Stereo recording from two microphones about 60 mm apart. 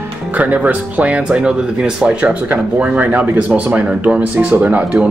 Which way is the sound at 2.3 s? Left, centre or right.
Right.